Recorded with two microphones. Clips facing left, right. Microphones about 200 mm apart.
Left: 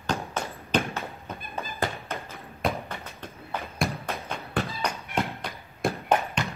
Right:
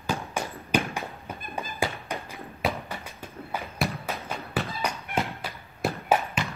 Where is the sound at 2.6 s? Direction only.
10° right (ahead or behind).